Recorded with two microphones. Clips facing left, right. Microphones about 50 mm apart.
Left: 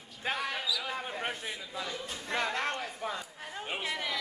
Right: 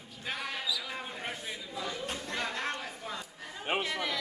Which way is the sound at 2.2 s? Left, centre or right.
Left.